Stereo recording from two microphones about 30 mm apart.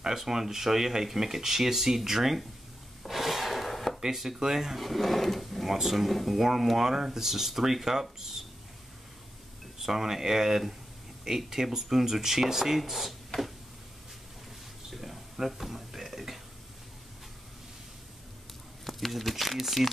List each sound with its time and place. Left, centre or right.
0.0 s speech: centre
3.0 s wood: centre
4.0 s speech: centre
4.7 s speech: centre
5.7 s speech: centre
9.8 s speech: centre
14.9 s a sound: centre
15.3 s speech: centre
18.9 s speech: centre